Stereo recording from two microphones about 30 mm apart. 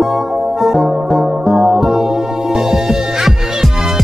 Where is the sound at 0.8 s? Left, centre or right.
Right.